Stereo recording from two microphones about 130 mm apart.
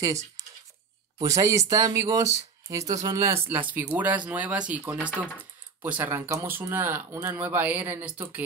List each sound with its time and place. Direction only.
1.1 s speech: 25° right (ahead or behind)
3.4 s speech: 15° right (ahead or behind)